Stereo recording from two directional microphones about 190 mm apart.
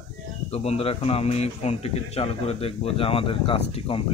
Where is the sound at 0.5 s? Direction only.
35° left (ahead or behind).